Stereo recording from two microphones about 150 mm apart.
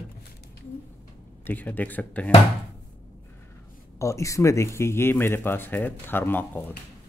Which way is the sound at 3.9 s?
20° left (ahead or behind).